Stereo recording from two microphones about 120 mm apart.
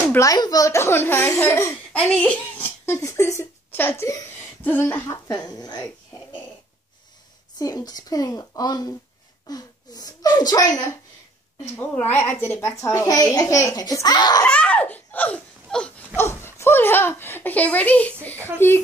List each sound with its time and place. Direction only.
0.2 s speech: 30° left (ahead or behind)
7.5 s speech: 35° left (ahead or behind)
11.9 s speech: 15° left (ahead or behind); by 14.4 s 35° left (ahead or behind)
14.4 s laughter: 10° left (ahead or behind)
16.2 s speech: 20° left (ahead or behind)